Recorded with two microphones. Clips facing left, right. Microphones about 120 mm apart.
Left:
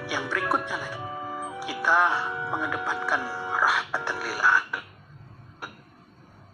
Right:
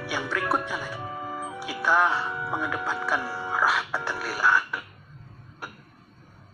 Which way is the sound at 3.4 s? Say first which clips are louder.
Even; 5° left (ahead or behind).